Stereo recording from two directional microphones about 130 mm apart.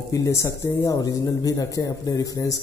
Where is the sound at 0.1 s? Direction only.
25° left (ahead or behind).